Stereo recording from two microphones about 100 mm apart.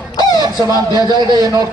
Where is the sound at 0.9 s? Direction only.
45° right (ahead or behind).